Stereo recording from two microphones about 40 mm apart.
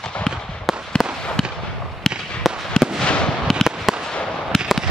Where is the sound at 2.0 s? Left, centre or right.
Centre.